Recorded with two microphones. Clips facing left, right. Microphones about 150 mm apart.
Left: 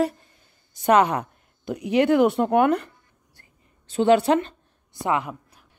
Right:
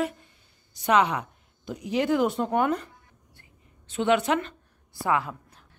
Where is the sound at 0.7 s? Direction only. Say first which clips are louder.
Left 4 dB; 50° left (ahead or behind).